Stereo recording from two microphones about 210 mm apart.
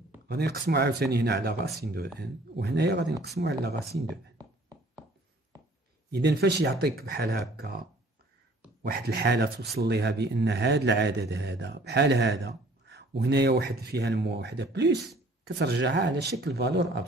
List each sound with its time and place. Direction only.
0.3 s speech: 50° right (ahead or behind)
6.0 s speech: 50° right (ahead or behind)
8.8 s speech: 50° right (ahead or behind)